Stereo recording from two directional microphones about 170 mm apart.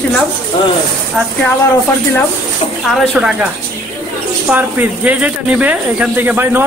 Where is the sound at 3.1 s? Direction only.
5° right (ahead or behind).